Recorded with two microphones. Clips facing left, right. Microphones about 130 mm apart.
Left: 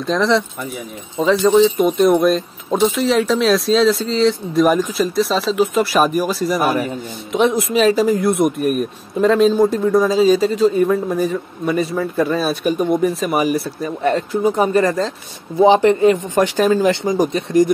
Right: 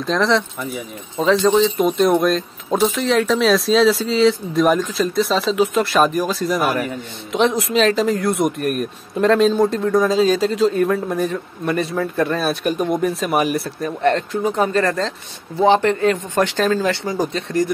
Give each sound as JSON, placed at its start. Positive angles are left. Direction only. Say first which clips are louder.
{"t": 0.0, "sound": "speech", "louder": "left 1 dB", "side_deg": 0}
{"t": 6.6, "sound": "a man's voice", "louder": "left 2 dB", "side_deg": 25}
{"t": 7.3, "sound": "speech", "louder": "left 1 dB", "side_deg": 5}